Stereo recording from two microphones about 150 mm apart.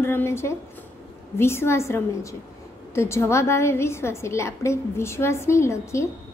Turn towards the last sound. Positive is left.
turn(degrees=20)  # may be behind; listen again after turning